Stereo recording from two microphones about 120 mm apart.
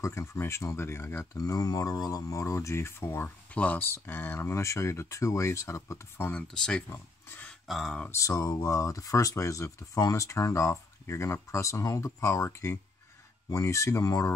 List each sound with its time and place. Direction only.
0.0 s speech: 25° left (ahead or behind)
6.4 s speech: 5° left (ahead or behind)
6.9 s speech: 20° left (ahead or behind)
7.6 s speech: centre (ahead or behind)
8.1 s speech: 25° left (ahead or behind)